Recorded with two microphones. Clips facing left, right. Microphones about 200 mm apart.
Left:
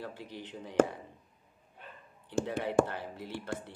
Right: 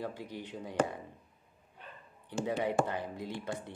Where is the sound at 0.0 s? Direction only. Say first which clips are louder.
Right 3 dB; 15° right (ahead or behind).